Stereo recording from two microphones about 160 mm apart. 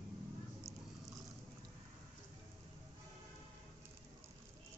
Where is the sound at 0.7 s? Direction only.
20° right (ahead or behind).